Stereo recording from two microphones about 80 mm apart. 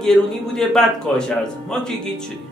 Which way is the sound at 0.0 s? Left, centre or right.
Centre.